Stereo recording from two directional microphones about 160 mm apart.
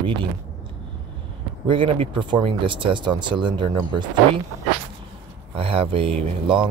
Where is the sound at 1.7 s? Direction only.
35° right (ahead or behind).